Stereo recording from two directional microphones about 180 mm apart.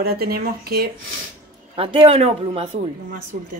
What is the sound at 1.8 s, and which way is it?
Speech, 35° right (ahead or behind).